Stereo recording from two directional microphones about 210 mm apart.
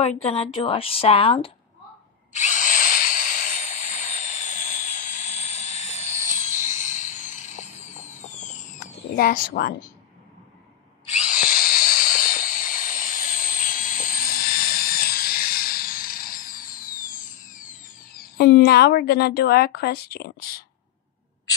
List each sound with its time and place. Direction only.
0.0 s speech: 30° left (ahead or behind)
2.3 s drill: 35° left (ahead or behind)
6.4 s a sound: 35° left (ahead or behind)
11.1 s drill: 35° left (ahead or behind)
18.4 s a woman's voice: 50° left (ahead or behind)